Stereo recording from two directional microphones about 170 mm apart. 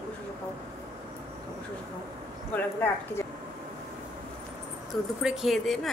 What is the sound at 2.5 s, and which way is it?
Speech, 10° left (ahead or behind).